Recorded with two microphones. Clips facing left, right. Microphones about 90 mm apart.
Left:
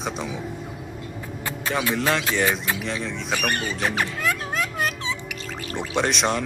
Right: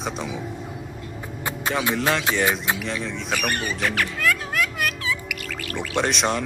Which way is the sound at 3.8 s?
20° left (ahead or behind).